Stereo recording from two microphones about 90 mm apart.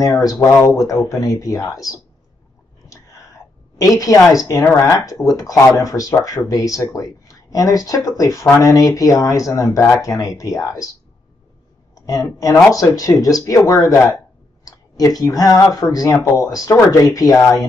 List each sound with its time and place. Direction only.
0.0 s speech: 45° left (ahead or behind)
2.9 s a sound: 40° left (ahead or behind)
4.7 s speech: 40° left (ahead or behind)
11.9 s speech: 40° left (ahead or behind)